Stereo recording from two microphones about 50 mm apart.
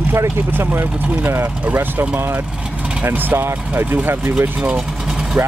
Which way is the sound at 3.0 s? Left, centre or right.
Right.